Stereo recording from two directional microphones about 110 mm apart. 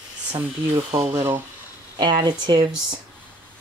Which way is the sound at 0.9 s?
65° right (ahead or behind).